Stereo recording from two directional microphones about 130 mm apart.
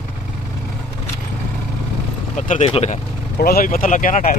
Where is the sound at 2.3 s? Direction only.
80° left.